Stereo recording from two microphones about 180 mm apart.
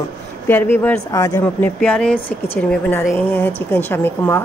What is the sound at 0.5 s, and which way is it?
Speech, 10° left (ahead or behind).